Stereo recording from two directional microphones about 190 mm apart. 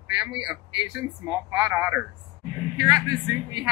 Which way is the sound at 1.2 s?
15° right (ahead or behind).